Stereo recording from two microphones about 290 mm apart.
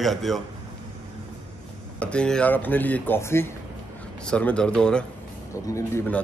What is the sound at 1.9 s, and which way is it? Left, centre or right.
Speech, centre.